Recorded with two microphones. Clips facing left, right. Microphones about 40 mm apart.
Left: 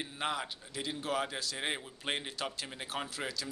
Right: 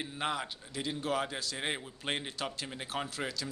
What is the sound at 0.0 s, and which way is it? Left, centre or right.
A man's voice, centre.